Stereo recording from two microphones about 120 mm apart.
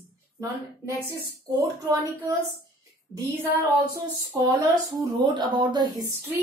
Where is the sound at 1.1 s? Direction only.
30° right (ahead or behind).